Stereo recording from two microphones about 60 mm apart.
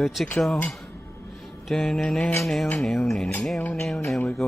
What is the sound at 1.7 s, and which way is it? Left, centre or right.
Mantra, centre.